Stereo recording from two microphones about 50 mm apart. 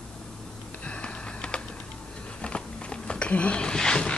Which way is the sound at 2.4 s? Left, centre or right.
Centre.